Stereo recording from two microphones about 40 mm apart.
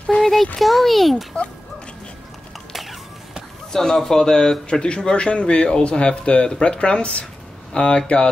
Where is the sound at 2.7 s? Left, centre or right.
Centre.